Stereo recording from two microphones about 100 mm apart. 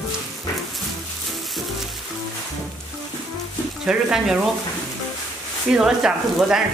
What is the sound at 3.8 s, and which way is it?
Speech, 5° right (ahead or behind).